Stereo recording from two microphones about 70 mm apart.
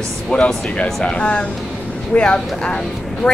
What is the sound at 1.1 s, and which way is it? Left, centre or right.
A woman's voice, centre.